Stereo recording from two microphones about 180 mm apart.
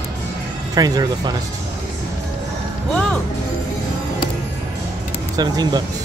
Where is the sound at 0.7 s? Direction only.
20° right (ahead or behind).